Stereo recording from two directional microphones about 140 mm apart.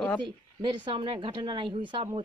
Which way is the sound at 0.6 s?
35° right (ahead or behind).